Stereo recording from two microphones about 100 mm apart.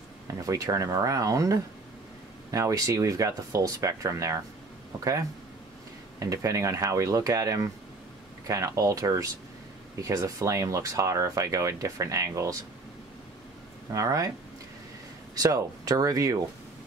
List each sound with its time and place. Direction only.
0.3 s speech: 35° right (ahead or behind)
6.1 s speech: 35° right (ahead or behind)
13.9 s speech: 35° right (ahead or behind)
15.3 s speech: 35° right (ahead or behind)